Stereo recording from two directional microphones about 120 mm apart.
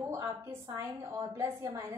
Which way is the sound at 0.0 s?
25° right (ahead or behind).